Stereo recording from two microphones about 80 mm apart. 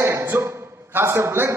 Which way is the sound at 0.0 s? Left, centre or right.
Right.